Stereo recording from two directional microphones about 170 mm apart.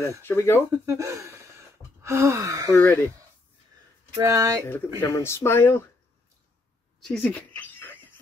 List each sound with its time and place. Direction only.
0.2 s speech: 10° left (ahead or behind)
0.7 s speech: 20° right (ahead or behind)
2.0 s gasp: 15° right (ahead or behind)
2.7 s speech: 15° left (ahead or behind)
4.2 s speech: 20° right (ahead or behind)
5.0 s speech: 15° left (ahead or behind)
7.0 s a sound: 5° left (ahead or behind)